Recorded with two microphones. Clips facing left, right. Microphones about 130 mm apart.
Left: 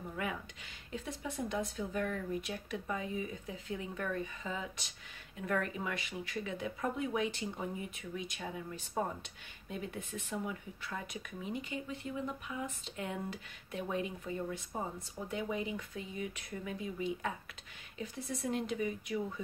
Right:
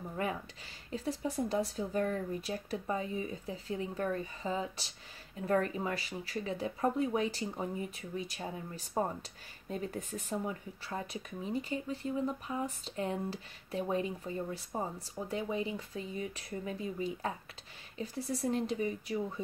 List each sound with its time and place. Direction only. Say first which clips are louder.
0.2 s speech: right 4 dB; 35° right (ahead or behind)